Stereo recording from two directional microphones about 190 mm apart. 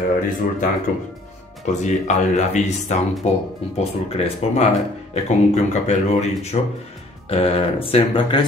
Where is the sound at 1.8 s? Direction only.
40° left (ahead or behind).